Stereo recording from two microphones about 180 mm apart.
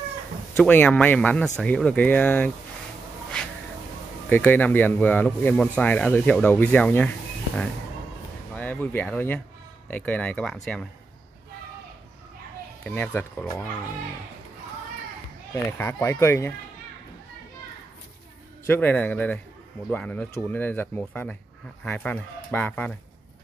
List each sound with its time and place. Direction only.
0.6 s speech: 10° left (ahead or behind)
3.3 s a sound: 5° left (ahead or behind)
4.3 s speech: 10° left (ahead or behind)
12.8 s speech: 10° left (ahead or behind)
15.5 s speech: 15° left (ahead or behind)
18.7 s speech: 10° left (ahead or behind)